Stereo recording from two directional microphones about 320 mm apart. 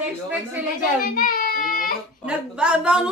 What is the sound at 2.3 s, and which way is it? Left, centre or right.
Speech, centre.